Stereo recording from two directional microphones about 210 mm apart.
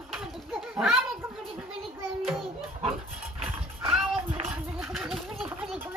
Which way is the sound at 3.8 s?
10° right (ahead or behind).